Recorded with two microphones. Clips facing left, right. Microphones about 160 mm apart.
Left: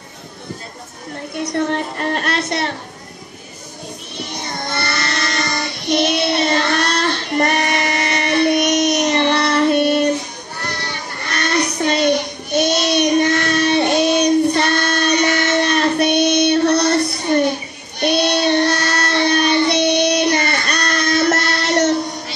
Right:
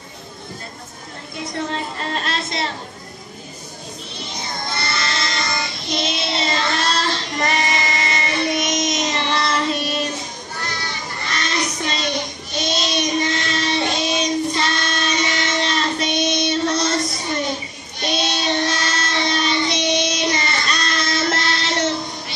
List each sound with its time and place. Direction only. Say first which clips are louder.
1.3 s a woman's voice: left 6 dB; 65° left (ahead or behind)
4.3 s child singing: left 3 dB; 65° left (ahead or behind)